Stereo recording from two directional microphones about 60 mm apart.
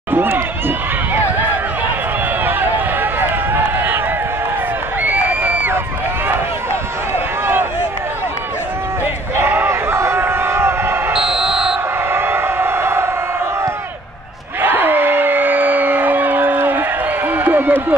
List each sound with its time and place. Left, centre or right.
0.1 s run: right
3.0 s run: right
5.0 s crowd: right
9.0 s a sound: right
11.1 s basketball bounce: centre
12.1 s siren: right
14.6 s crowd: right
17.3 s a sound: right